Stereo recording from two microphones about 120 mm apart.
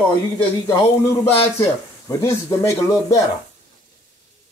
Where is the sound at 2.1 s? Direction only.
25° left (ahead or behind).